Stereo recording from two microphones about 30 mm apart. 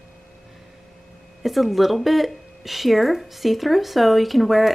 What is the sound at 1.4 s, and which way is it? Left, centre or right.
Speech, centre.